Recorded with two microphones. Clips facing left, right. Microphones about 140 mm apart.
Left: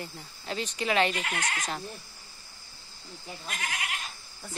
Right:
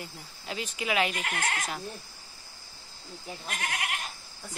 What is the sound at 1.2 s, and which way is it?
Speech, 50° right (ahead or behind).